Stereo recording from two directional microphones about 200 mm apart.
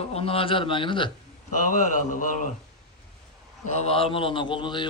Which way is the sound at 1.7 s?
40° left (ahead or behind).